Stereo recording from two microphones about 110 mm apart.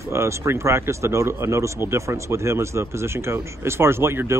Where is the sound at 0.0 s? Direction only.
25° right (ahead or behind).